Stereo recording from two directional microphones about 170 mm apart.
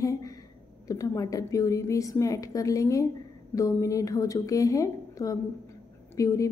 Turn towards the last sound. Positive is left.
turn(degrees=20)  # may be behind; listen again after turning